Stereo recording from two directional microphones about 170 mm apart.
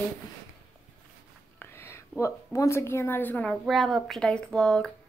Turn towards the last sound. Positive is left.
turn(degrees=5)  # may be behind; listen again after turning